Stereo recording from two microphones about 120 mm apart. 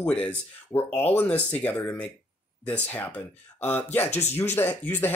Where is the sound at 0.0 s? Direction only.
10° left (ahead or behind).